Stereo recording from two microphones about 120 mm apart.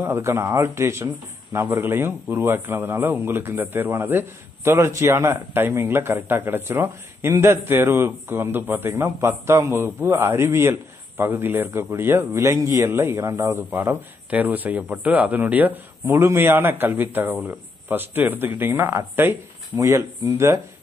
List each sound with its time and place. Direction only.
0.0 s speech: 20° right (ahead or behind)
20.3 s speech: 20° right (ahead or behind)